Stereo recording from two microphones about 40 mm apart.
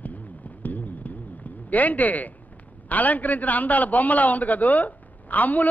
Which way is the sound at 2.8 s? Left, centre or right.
Left.